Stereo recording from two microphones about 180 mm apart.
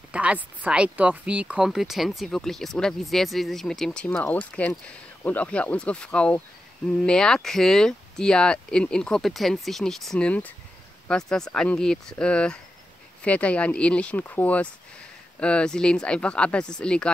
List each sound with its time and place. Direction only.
0.1 s speech: 5° right (ahead or behind)